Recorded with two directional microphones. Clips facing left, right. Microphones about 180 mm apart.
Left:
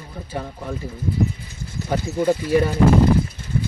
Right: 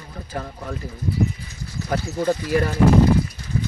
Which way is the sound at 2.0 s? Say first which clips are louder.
Left 4 dB; 10° left (ahead or behind).